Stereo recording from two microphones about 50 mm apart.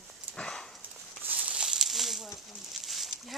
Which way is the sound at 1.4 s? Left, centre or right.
Centre.